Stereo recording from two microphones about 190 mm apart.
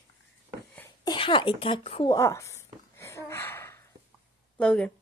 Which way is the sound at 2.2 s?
15° left (ahead or behind).